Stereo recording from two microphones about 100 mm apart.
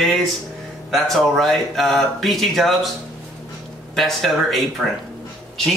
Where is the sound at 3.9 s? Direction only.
Centre (ahead or behind).